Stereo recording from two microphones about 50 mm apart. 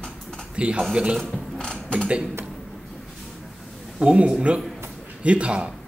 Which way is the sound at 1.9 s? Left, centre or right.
Right.